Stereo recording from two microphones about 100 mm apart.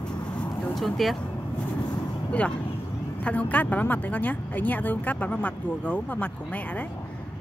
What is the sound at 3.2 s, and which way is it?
A woman's voice, 15° left (ahead or behind).